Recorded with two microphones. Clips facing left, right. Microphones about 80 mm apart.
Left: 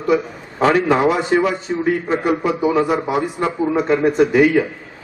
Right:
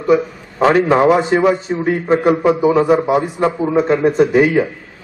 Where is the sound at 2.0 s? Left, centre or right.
Right.